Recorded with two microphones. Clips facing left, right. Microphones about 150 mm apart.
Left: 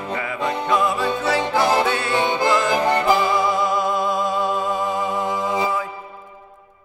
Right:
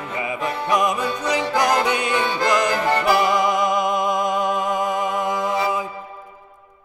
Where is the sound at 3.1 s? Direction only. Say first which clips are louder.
Even; 20° right (ahead or behind).